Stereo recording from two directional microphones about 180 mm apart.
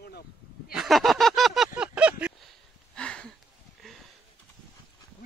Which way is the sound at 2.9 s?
5° left (ahead or behind).